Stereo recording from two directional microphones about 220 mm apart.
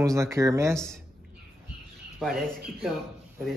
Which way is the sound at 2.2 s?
Centre (ahead or behind).